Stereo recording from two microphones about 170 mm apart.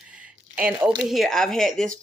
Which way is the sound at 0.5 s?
10° right (ahead or behind).